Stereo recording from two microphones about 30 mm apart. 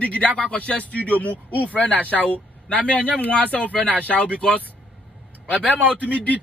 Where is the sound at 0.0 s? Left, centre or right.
Left.